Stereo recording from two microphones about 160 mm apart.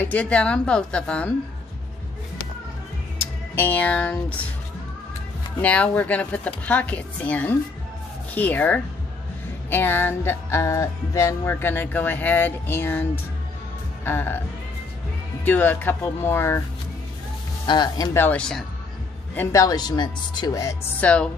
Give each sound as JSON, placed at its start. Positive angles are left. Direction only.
{"t": 0.0, "sound": "music", "side_deg": 10}
{"t": 3.5, "sound": "music", "side_deg": 10}
{"t": 5.6, "sound": "music", "side_deg": 10}
{"t": 15.4, "sound": "music", "side_deg": 10}
{"t": 17.6, "sound": "speech", "side_deg": 25}
{"t": 19.3, "sound": "speech", "side_deg": 20}
{"t": 21.0, "sound": "music", "side_deg": 5}